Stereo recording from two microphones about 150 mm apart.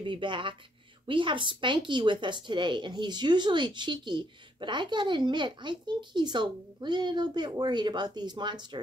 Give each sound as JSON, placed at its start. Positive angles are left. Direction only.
{"t": 0.0, "sound": "speech", "side_deg": -35}